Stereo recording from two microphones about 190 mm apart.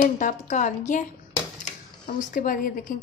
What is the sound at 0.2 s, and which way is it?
Speech, 40° left (ahead or behind).